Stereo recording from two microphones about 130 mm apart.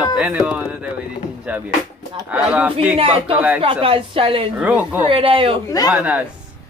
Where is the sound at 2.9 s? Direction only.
45° right (ahead or behind).